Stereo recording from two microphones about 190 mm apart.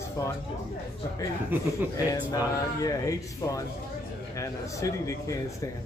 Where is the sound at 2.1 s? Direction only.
20° left (ahead or behind).